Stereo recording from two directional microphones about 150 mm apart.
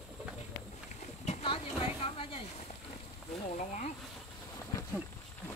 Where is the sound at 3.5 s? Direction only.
55° left (ahead or behind).